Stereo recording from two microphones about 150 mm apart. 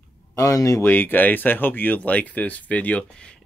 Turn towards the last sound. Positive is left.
turn(degrees=5)  # may be behind; listen again after turning